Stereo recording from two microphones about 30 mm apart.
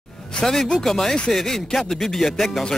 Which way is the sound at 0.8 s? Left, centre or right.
Centre.